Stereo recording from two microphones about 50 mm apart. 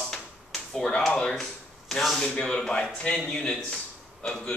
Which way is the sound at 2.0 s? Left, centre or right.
Centre.